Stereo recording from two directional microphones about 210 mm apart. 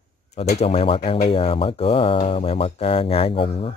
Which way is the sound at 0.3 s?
30° left (ahead or behind).